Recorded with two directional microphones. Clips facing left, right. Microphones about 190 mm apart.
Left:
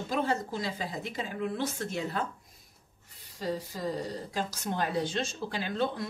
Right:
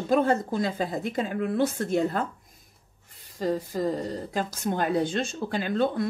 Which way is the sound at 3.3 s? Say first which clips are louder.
Right 7 dB; 50° right (ahead or behind).